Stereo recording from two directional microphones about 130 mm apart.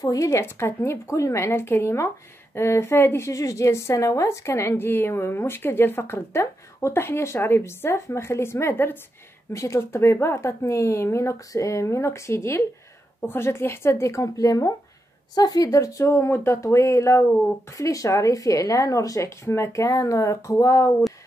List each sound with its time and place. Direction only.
0.0 s a woman's voice: 25° left (ahead or behind)